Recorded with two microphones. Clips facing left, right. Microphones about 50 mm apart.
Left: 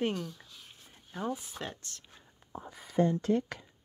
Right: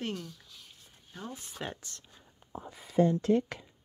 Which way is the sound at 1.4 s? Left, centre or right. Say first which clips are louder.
Even; centre.